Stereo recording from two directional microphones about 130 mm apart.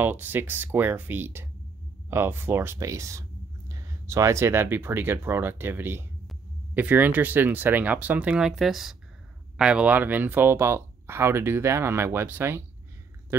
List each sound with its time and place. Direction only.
0.0 s speech: 15° right (ahead or behind)